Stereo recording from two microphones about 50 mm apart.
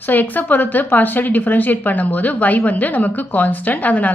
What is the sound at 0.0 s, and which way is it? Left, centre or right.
A woman's voice, left.